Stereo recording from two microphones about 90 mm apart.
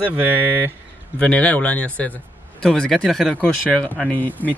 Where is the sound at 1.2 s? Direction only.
15° left (ahead or behind).